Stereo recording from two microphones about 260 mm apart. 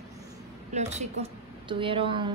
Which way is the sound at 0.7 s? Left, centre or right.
Right.